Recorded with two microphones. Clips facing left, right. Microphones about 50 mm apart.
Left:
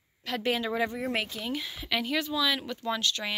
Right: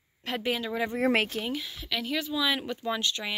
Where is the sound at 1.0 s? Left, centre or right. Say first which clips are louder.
Right 6 dB; right.